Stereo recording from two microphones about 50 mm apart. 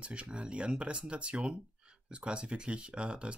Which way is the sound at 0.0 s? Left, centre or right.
Right.